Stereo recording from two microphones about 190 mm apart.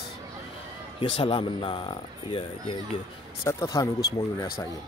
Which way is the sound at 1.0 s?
30° left (ahead or behind).